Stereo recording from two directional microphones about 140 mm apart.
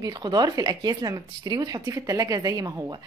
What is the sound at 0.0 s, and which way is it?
Speech, 30° right (ahead or behind).